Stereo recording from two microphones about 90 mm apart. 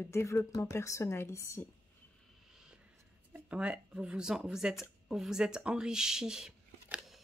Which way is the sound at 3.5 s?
10° right (ahead or behind).